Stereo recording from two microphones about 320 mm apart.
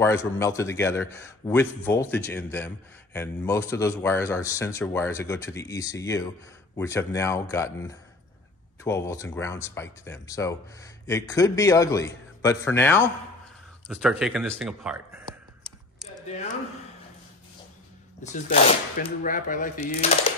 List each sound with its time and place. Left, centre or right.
0.0 s a man's voice: centre
18.3 s speech: left